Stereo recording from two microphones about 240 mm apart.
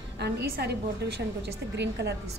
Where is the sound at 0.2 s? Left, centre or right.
Right.